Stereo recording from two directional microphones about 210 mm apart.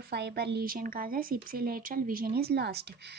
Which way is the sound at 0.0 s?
50° right (ahead or behind).